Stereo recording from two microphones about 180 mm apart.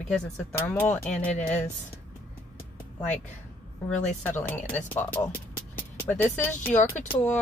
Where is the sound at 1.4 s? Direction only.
40° left (ahead or behind).